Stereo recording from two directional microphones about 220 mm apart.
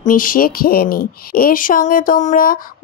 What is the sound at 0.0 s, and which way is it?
Speech, 40° left (ahead or behind).